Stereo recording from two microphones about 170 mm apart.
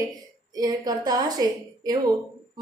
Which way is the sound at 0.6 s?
20° right (ahead or behind).